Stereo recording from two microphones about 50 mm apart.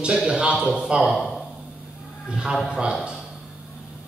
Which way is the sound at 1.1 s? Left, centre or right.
Centre.